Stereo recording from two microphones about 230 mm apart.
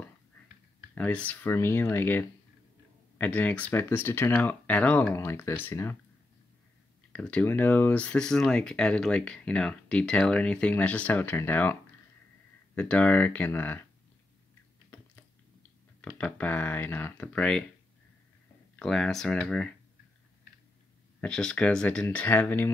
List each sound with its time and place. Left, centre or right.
0.9 s speech: centre
7.1 s speech: centre
16.0 s speech: centre
18.8 s speech: centre
21.2 s speech: centre